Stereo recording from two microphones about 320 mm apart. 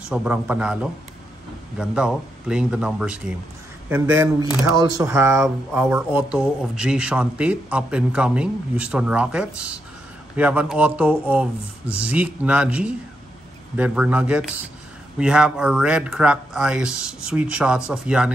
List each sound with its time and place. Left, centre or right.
0.1 s speech: centre